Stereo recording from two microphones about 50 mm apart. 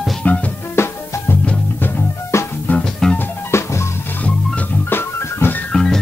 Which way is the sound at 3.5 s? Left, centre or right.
Left.